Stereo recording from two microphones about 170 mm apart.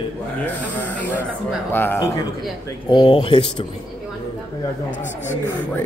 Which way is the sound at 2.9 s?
30° left (ahead or behind).